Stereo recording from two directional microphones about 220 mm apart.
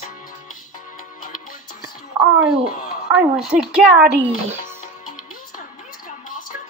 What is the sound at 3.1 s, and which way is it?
Speech, 5° right (ahead or behind).